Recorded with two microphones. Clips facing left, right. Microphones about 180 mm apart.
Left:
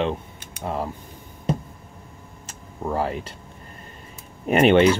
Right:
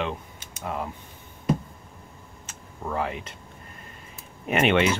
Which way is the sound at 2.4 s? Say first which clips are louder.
Left 5 dB; 35° left (ahead or behind).